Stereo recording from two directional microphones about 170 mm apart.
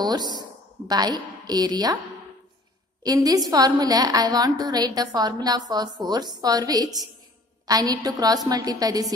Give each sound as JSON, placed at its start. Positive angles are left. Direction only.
{"t": 0.0, "sound": "a woman's voice", "side_deg": -25}
{"t": 3.0, "sound": "a woman's voice", "side_deg": -20}